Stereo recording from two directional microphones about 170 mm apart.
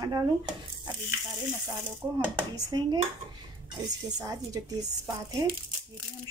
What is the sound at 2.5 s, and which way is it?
Speech, 25° right (ahead or behind).